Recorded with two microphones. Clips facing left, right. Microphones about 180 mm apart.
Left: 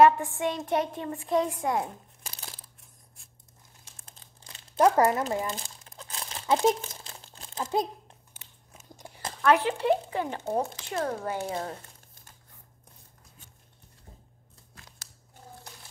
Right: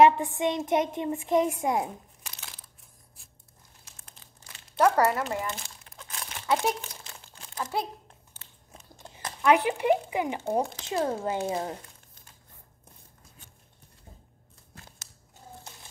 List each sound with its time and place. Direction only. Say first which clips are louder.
0.0 s a woman's voice: even; 20° right (ahead or behind)
2.2 s crumpling: left 4 dB; 30° left (ahead or behind)
3.2 s a sound: right 1 dB; centre (ahead or behind)
3.9 s crumpling: even; 30° left (ahead or behind)
7.0 s crumpling: left 1 dB; 35° left (ahead or behind)
9.0 s a sound: left 1 dB; 10° left (ahead or behind)
9.4 s speech: right 1 dB; 15° right (ahead or behind)